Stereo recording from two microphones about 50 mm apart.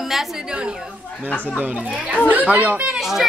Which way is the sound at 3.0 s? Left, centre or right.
Centre.